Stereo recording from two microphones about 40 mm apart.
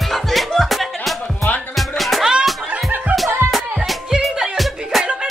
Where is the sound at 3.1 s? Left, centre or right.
Right.